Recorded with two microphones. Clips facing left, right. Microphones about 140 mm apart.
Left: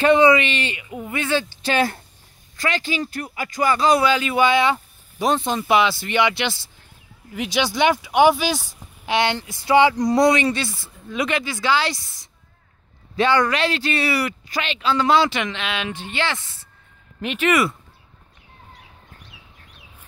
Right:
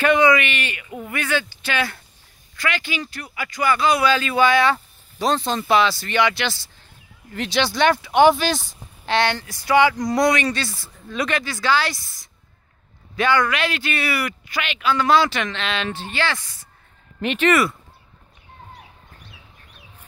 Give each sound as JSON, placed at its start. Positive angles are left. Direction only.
{"t": 0.0, "sound": "speech", "side_deg": 30}
{"t": 4.0, "sound": "speech", "side_deg": 20}
{"t": 7.3, "sound": "speech", "side_deg": 10}
{"t": 17.2, "sound": "speech", "side_deg": 5}
{"t": 19.3, "sound": "chicken", "side_deg": 10}